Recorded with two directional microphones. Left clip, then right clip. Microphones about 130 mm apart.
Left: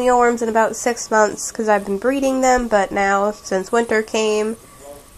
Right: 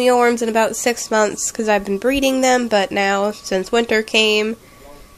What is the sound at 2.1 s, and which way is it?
Speech, 15° right (ahead or behind).